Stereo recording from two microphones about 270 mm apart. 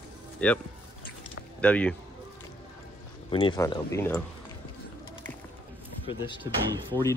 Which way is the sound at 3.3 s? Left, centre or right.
Centre.